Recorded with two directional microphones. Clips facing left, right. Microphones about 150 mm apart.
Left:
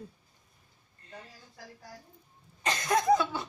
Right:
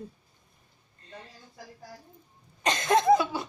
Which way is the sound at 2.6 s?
20° right (ahead or behind).